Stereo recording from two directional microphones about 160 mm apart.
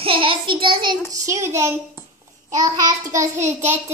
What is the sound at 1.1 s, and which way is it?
Speech, 20° right (ahead or behind).